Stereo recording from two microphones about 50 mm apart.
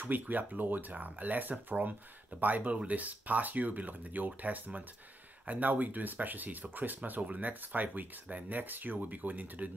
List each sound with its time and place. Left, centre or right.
0.0 s speech: right